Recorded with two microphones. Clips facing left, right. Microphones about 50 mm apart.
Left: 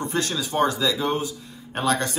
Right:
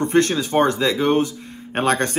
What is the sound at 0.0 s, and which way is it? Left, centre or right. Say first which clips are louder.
Speech: right 8 dB; right.